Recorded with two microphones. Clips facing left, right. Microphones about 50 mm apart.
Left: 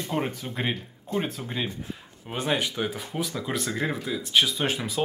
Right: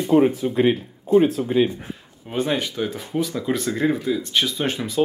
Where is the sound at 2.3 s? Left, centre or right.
Centre.